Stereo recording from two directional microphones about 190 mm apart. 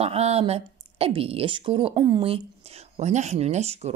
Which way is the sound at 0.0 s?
35° right (ahead or behind).